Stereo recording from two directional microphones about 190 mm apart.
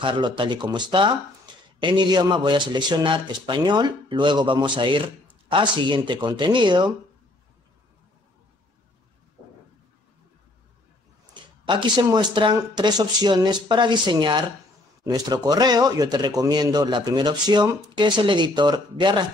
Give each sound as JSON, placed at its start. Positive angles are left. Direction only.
{"t": 0.0, "sound": "speech", "side_deg": -25}
{"t": 11.6, "sound": "speech", "side_deg": -25}